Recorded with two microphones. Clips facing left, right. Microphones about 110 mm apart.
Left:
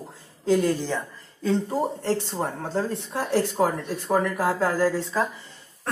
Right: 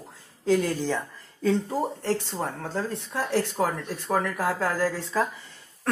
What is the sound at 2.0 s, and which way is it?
Speech, 20° left (ahead or behind).